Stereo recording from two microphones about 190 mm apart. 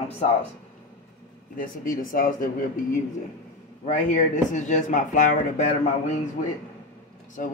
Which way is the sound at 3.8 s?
40° left (ahead or behind).